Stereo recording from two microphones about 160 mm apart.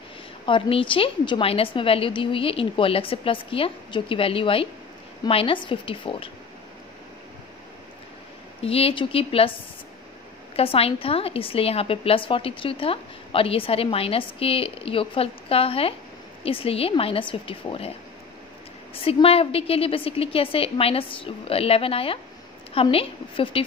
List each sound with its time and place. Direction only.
0.5 s a woman's voice: 35° left (ahead or behind)
8.5 s a woman's voice: 40° left (ahead or behind)
10.5 s a woman's voice: 35° left (ahead or behind)
18.9 s a woman's voice: 35° left (ahead or behind)